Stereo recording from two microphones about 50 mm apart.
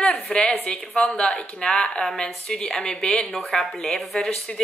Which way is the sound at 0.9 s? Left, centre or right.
Centre.